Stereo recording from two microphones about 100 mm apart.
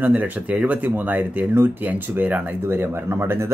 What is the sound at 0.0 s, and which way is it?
Speech, 15° right (ahead or behind).